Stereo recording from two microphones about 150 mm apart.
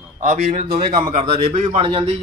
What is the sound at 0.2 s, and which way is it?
Speech, 50° right (ahead or behind).